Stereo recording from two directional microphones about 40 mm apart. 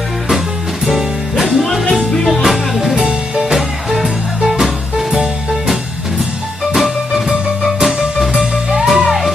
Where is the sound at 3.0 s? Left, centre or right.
Centre.